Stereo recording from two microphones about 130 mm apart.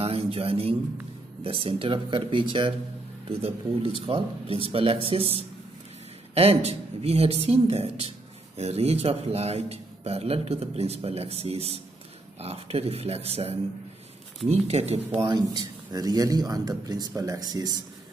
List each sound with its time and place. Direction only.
0.0 s a man's voice: 45° right (ahead or behind)
15.2 s a man's voice: 30° right (ahead or behind)